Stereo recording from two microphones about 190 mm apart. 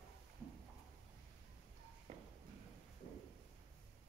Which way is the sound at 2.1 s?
30° right (ahead or behind).